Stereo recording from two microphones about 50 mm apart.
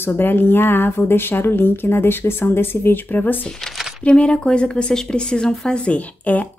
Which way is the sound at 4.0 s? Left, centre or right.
Left.